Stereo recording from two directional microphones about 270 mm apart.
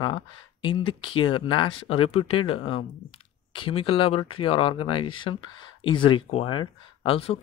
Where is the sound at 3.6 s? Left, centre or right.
Centre.